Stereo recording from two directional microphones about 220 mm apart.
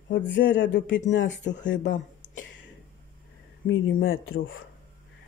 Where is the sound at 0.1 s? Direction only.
55° left (ahead or behind).